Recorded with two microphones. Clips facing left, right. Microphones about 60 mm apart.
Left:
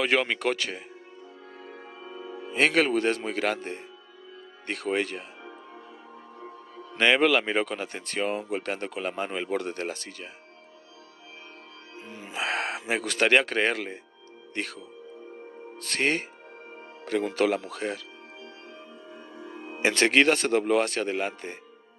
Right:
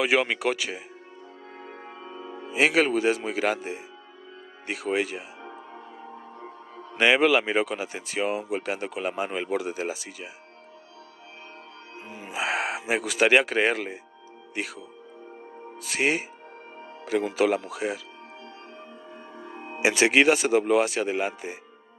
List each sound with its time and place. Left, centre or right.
0.0 s speech: centre
1.6 s music: right
2.4 s speech: centre
6.9 s speech: centre
12.1 s speech: centre
19.1 s music: right
19.8 s speech: centre